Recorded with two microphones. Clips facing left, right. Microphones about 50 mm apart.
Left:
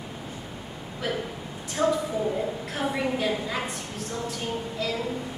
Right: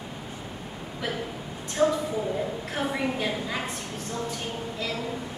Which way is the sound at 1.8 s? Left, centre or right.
Centre.